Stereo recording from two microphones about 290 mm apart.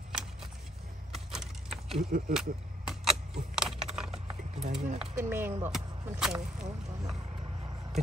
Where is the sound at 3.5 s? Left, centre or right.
Centre.